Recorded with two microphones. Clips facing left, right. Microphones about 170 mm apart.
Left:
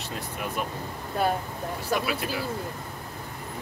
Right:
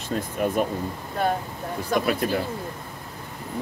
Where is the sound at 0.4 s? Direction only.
45° right (ahead or behind).